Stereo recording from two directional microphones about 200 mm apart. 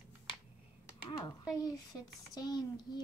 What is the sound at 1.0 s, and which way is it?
Speech, 20° left (ahead or behind).